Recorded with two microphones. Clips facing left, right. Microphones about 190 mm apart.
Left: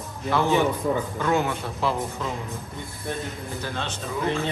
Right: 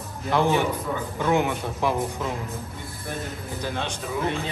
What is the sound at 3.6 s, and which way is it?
Speech, 15° right (ahead or behind).